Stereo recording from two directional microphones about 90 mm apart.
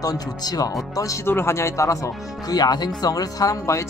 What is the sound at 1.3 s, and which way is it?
Speech, 25° left (ahead or behind).